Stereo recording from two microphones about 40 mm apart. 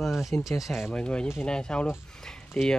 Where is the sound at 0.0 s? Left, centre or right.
Centre.